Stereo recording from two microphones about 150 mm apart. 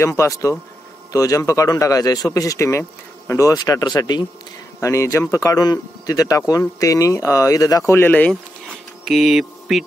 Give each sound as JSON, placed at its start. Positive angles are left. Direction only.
{"t": 0.0, "sound": "speech", "side_deg": 20}
{"t": 9.0, "sound": "speech", "side_deg": -5}